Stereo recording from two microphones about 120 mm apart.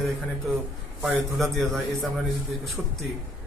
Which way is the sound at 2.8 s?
20° right (ahead or behind).